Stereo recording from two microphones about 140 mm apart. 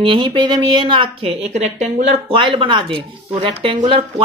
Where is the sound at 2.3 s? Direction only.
40° right (ahead or behind).